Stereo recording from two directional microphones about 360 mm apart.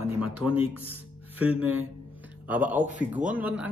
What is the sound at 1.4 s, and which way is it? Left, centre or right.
A man's voice, centre.